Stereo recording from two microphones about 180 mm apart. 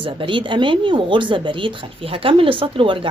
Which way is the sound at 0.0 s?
30° right (ahead or behind).